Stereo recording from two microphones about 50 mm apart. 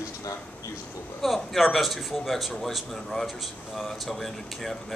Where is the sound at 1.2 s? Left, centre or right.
Centre.